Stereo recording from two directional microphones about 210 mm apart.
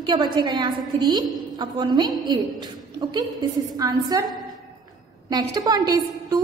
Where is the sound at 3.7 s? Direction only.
15° right (ahead or behind).